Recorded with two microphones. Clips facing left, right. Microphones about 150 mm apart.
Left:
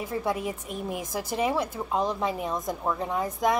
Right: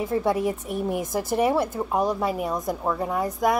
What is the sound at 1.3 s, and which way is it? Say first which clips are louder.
Speech: right 5 dB; 15° right (ahead or behind).